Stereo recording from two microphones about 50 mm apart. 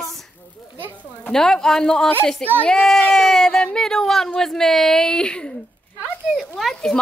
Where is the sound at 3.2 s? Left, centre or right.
Centre.